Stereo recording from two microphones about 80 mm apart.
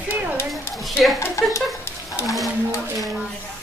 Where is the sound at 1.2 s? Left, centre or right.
Left.